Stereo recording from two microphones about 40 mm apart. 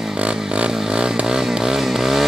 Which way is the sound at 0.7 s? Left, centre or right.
Centre.